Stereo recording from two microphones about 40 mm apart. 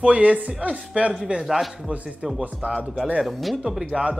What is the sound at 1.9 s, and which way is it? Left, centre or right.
Speech, right.